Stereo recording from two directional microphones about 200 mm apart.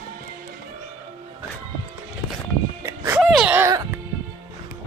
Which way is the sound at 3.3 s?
5° right (ahead or behind).